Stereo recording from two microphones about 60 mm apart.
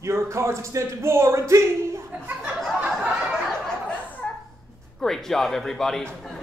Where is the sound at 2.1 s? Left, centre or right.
Right.